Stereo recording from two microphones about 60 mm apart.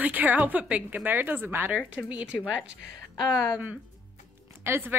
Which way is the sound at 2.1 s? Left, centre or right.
Centre.